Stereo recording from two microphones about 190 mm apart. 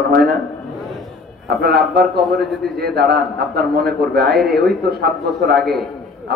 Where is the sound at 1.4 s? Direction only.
55° right (ahead or behind).